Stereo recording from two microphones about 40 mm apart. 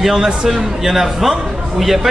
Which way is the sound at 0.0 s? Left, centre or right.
Centre.